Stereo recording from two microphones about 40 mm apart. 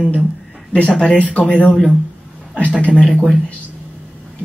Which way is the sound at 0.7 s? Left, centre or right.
Left.